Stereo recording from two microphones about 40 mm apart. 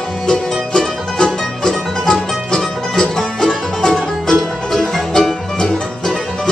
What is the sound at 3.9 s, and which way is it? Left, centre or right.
Music, centre.